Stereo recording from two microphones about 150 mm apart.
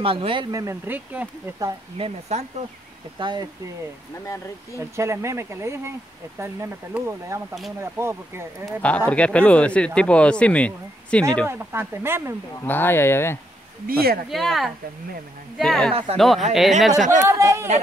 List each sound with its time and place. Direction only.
0.0 s speech: 40° right (ahead or behind)
0.5 s speech: 20° right (ahead or behind)
2.0 s speech: 45° right (ahead or behind)
3.2 s speech: 30° right (ahead or behind)
4.7 s speech: 20° right (ahead or behind)
8.6 s speech: 10° left (ahead or behind)
11.4 s speech: 15° right (ahead or behind)
12.6 s speech: 15° left (ahead or behind)
13.8 s speech: 90° right
14.3 s speech: centre (ahead or behind)
15.9 s speech: 40° right (ahead or behind)
16.2 s speech: centre (ahead or behind)
17.0 s speech: 55° right (ahead or behind)
17.3 s speech: 20° right (ahead or behind)